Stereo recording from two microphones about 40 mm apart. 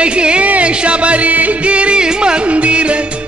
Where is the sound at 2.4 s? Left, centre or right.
Right.